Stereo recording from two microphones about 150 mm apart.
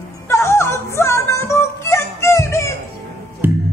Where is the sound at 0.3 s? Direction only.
20° left (ahead or behind).